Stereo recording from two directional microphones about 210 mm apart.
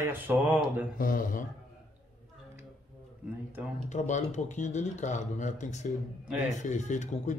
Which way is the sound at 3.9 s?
35° left (ahead or behind).